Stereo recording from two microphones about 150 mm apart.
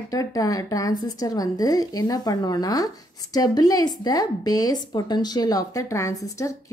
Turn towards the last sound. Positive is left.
turn(degrees=20)  # may be behind; listen again after turning